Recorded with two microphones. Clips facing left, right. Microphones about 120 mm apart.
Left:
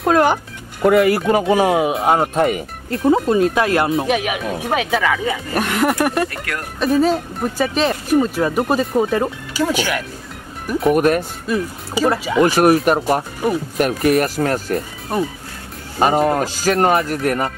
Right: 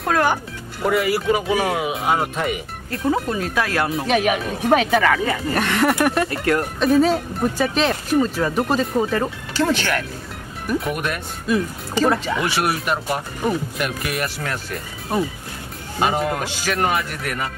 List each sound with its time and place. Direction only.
0.0 s speech: 25° left (ahead or behind)
0.8 s speech: 55° left (ahead or behind)
2.9 s speech: 25° left (ahead or behind)
4.1 s speech: 5° left (ahead or behind)
6.2 s speech: 30° right (ahead or behind)
6.8 s speech: centre (ahead or behind)
10.9 s speech: 45° left (ahead or behind)
11.4 s speech: 5° left (ahead or behind)
12.4 s speech: 40° left (ahead or behind)
13.4 s speech: 10° left (ahead or behind)
13.7 s speech: 40° left (ahead or behind)
16.0 s speech: 35° left (ahead or behind)